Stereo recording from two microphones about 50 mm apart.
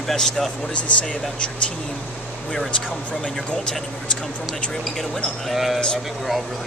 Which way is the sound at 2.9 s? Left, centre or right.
Centre.